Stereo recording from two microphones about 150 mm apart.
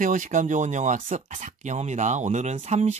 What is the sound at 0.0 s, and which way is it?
Speech, 60° right (ahead or behind).